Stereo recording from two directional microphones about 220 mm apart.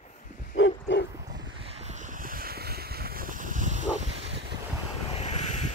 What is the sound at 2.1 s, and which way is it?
Boat, 40° right (ahead or behind).